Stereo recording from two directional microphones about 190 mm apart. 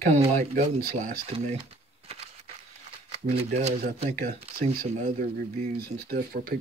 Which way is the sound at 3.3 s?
35° right (ahead or behind).